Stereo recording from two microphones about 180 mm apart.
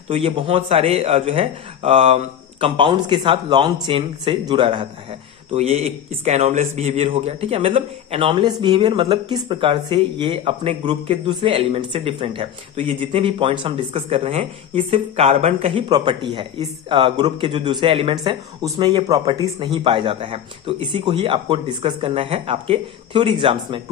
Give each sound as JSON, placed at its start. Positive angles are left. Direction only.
{"t": 0.1, "sound": "a man's voice", "side_deg": -30}
{"t": 5.5, "sound": "a man's voice", "side_deg": -35}